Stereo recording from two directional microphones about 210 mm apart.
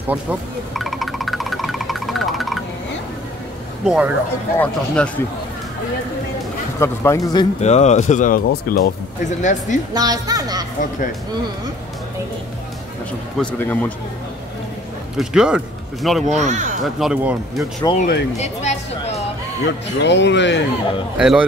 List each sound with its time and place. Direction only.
0.1 s music: 5° right (ahead or behind)
3.8 s speech: 5° right (ahead or behind)
6.8 s speech: 15° left (ahead or behind)
7.6 s speech: 35° left (ahead or behind)
9.9 s music: 20° right (ahead or behind)
13.4 s speech: 5° left (ahead or behind)
15.1 s speech: 5° right (ahead or behind)
16.3 s speech: 35° right (ahead or behind)
16.8 s speech: 5° right (ahead or behind)
17.9 s music: 40° left (ahead or behind)
20.0 s speech: 55° left (ahead or behind)
21.2 s speech: 5° right (ahead or behind)